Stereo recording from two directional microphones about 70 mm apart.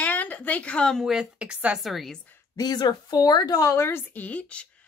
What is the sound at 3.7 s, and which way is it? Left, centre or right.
A woman's voice, left.